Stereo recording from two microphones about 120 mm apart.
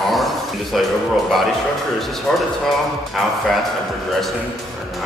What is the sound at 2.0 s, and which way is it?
A man's voice, 5° left (ahead or behind).